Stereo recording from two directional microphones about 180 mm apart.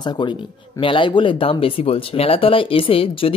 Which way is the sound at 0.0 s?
25° left (ahead or behind).